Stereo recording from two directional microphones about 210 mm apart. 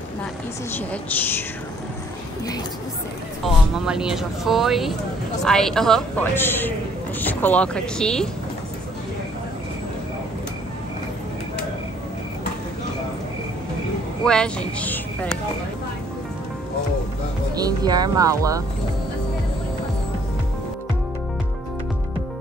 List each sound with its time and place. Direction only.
3.4 s speech: centre (ahead or behind)
14.2 s speech: 5° left (ahead or behind)
17.6 s speech: 20° right (ahead or behind)